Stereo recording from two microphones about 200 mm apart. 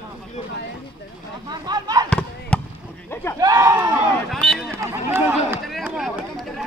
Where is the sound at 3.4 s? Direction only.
15° right (ahead or behind); by 4.7 s centre (ahead or behind).